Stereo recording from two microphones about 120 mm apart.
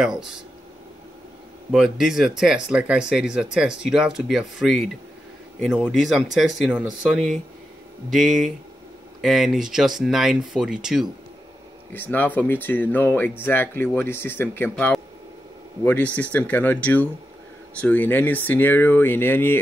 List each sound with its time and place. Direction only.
0.0 s speech: 5° right (ahead or behind)
1.7 s speech: 5° right (ahead or behind)
11.9 s speech: 15° left (ahead or behind)